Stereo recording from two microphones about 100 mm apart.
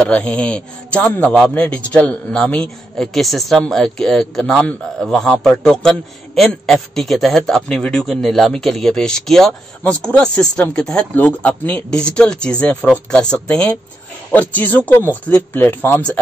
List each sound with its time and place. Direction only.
0.0 s speech: 15° left (ahead or behind)